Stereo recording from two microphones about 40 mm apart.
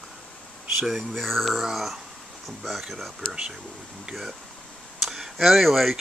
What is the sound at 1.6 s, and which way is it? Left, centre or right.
Speech, centre.